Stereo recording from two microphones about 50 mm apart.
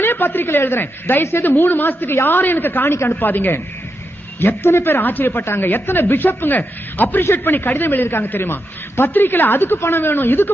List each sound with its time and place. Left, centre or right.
0.0 s a man's voice: left